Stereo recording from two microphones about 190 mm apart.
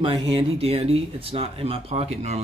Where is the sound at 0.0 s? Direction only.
30° right (ahead or behind).